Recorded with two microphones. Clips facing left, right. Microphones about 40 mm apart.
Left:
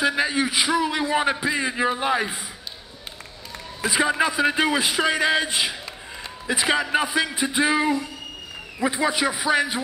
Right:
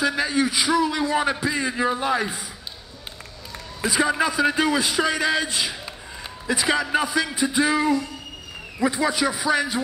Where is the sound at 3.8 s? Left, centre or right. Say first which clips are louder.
Even; left.